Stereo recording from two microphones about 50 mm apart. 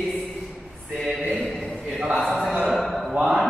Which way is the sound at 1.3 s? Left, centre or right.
Centre.